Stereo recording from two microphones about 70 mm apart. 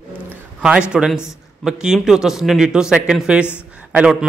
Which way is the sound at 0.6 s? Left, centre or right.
Centre.